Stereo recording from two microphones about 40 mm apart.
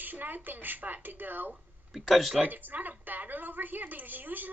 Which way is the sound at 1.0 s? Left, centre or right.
Right.